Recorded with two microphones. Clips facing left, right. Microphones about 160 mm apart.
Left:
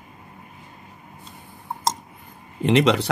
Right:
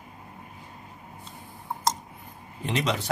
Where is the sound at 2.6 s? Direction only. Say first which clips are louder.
Left 9 dB; 75° left (ahead or behind).